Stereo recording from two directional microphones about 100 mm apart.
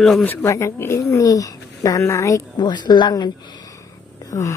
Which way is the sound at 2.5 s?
45° left (ahead or behind).